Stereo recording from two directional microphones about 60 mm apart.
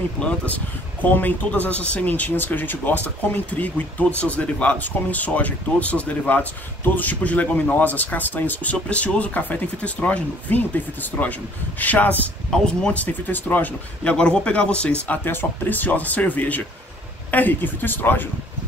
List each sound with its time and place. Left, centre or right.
1.0 s speech: left
8.7 s speech: left
12.5 s speech: centre
12.9 s speech: left
14.1 s speech: centre
15.0 s speech: left